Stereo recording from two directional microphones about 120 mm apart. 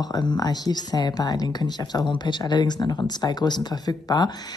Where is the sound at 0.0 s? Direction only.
35° left (ahead or behind).